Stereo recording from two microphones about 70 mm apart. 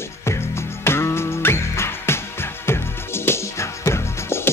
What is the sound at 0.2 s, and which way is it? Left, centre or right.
Music, left.